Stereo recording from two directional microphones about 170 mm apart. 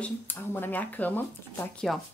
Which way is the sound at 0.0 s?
10° left (ahead or behind).